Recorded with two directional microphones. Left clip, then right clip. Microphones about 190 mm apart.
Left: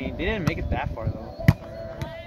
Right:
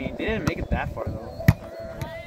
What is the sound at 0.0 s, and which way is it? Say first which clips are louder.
Speech: even; 60° right (ahead or behind).